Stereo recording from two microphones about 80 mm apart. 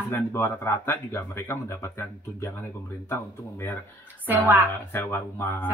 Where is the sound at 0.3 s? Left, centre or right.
Left.